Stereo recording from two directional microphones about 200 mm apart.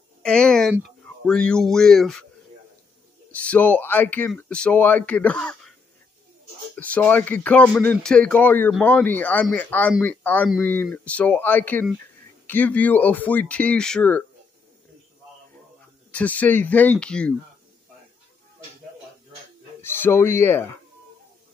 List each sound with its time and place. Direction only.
0.2 s speech: 5° left (ahead or behind)
3.3 s speech: 5° left (ahead or behind)
6.8 s a man's voice: 10° left (ahead or behind)
16.1 s speech: 5° left (ahead or behind)
19.8 s speech: 10° left (ahead or behind)